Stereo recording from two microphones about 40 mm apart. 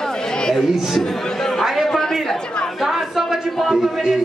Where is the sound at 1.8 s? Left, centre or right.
Centre.